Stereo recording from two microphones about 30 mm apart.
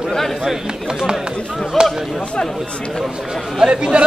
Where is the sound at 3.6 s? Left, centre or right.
Right.